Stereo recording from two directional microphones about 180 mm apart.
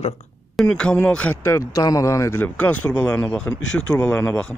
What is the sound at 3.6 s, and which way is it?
Speech, 90° left.